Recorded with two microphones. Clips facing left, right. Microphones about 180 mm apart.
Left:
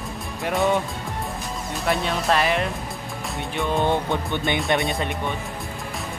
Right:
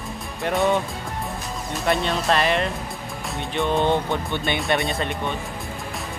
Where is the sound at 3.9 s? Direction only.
15° left (ahead or behind).